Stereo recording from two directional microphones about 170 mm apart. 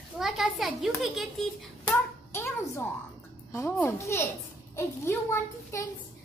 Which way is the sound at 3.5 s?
15° left (ahead or behind).